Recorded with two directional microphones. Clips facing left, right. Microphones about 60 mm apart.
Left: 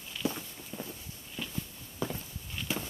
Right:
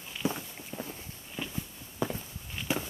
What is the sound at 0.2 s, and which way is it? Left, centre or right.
Walk, right.